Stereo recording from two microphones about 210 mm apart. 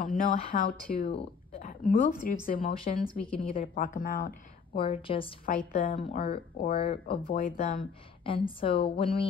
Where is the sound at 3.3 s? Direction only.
25° left (ahead or behind).